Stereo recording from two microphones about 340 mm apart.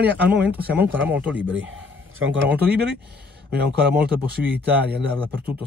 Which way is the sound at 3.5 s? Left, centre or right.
Right.